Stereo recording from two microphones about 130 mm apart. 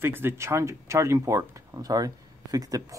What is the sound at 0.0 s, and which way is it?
Speech, 20° right (ahead or behind).